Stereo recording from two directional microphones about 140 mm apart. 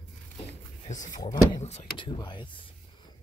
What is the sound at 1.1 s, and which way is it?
Speech, 30° left (ahead or behind).